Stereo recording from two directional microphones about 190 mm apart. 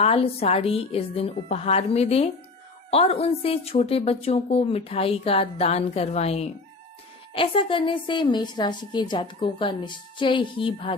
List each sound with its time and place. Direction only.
0.0 s a woman's voice: 30° left (ahead or behind)